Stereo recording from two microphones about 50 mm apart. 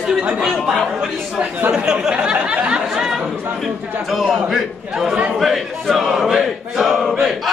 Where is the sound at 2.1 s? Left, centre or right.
Centre.